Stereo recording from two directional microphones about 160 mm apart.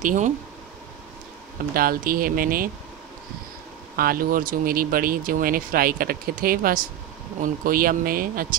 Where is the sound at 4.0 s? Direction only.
65° right (ahead or behind).